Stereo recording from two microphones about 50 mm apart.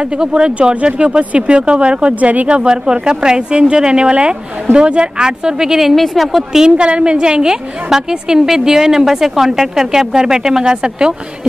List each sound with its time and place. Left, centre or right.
0.0 s a woman's voice: centre
6.8 s a woman's voice: centre